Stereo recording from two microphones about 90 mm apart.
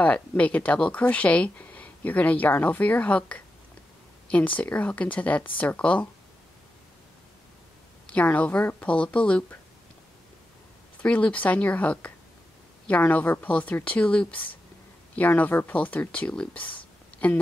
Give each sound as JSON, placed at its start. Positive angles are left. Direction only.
{"t": 0.0, "sound": "speech", "side_deg": 15}
{"t": 8.1, "sound": "speech", "side_deg": 15}
{"t": 11.0, "sound": "speech", "side_deg": 15}